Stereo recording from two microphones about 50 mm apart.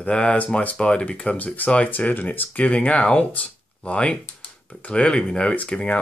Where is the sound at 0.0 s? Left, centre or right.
Left.